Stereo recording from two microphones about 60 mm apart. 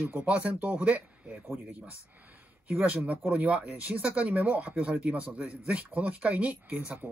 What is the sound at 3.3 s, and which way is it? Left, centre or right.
Speech, right.